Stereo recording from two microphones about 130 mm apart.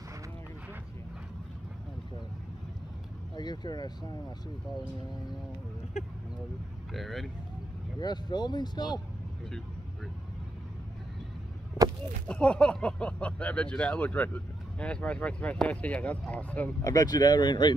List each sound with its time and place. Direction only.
3.3 s speech: 35° left (ahead or behind)
6.0 s speech: 60° left (ahead or behind)
6.9 s speech: centre (ahead or behind)
8.0 s speech: 35° left (ahead or behind)
12.3 s speech: 10° left (ahead or behind)
16.8 s speech: 30° left (ahead or behind)